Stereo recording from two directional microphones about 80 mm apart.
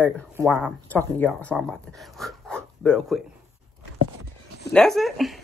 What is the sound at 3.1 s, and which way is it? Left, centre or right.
Speech, centre.